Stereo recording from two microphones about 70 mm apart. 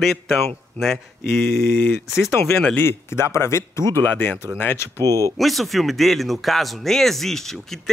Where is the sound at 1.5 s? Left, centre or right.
Left.